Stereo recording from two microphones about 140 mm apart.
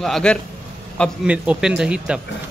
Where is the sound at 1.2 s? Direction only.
10° right (ahead or behind).